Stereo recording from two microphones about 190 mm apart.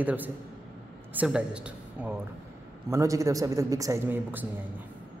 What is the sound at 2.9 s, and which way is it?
A man's voice, 15° right (ahead or behind).